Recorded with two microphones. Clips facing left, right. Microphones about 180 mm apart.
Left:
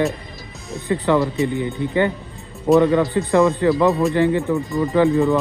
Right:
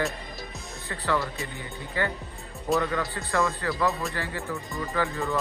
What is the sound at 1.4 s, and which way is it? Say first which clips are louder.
Speech: left 16 dB; 20° left (ahead or behind).